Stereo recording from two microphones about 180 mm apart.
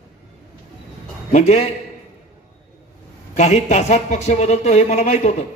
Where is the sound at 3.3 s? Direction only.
40° left (ahead or behind).